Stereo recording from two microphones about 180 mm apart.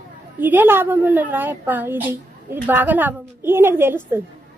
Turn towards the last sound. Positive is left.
turn(degrees=-10)  # may be behind; listen again after turning